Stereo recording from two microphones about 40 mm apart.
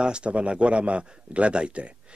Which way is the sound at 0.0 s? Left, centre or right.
Right.